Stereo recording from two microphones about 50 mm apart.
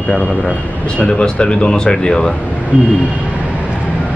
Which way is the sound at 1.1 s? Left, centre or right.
Left.